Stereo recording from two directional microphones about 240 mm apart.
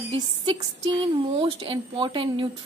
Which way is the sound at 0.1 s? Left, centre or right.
Right.